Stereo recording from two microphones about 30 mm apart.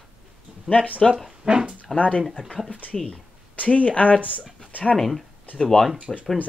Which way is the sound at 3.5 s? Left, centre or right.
Left.